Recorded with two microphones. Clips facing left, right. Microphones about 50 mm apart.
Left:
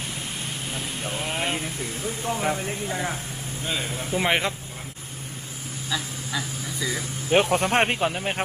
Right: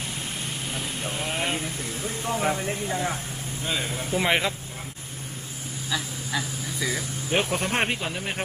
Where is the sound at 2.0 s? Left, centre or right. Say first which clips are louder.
Even; centre.